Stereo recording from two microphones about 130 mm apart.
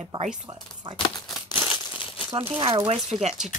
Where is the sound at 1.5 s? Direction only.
40° left (ahead or behind).